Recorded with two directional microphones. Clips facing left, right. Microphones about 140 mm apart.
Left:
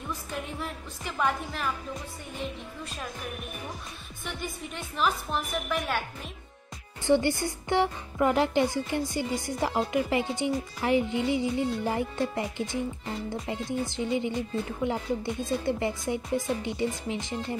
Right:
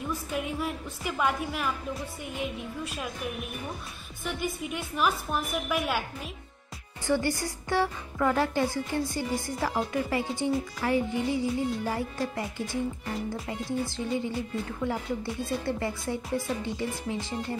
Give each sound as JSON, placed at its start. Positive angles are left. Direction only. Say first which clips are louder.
{"t": 0.3, "sound": "a woman's voice", "louder": "right 5 dB", "side_deg": -10}
{"t": 4.2, "sound": "a woman's voice", "louder": "right 4 dB", "side_deg": -5}
{"t": 7.1, "sound": "music", "louder": "left 3 dB", "side_deg": 20}
{"t": 15.4, "sound": "speech", "louder": "left 2 dB", "side_deg": 20}